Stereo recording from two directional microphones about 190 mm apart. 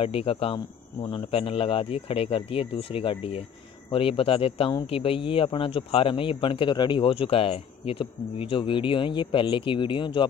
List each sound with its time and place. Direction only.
0.0 s speech: 30° left (ahead or behind)